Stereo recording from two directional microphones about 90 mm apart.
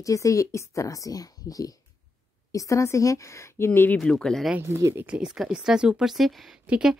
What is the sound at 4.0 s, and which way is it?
Speech, 10° left (ahead or behind).